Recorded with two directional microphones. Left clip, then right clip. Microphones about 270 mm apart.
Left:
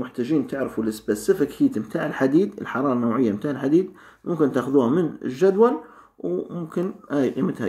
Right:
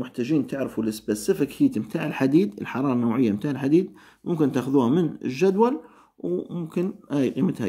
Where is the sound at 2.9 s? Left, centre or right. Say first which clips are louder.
Left 2 dB; right.